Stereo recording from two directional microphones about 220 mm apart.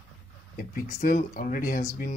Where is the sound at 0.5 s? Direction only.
40° left (ahead or behind).